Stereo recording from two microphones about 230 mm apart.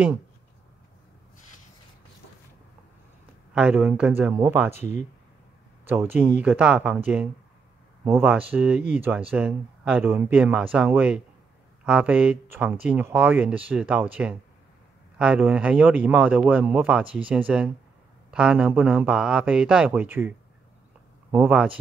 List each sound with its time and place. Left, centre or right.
3.5 s speech: centre
5.9 s a man's voice: centre
8.0 s a man's voice: centre